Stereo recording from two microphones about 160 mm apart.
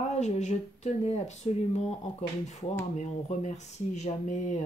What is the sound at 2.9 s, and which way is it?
Speech, 45° left (ahead or behind).